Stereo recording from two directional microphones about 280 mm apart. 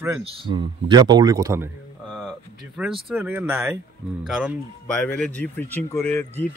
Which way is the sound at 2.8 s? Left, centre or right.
Centre.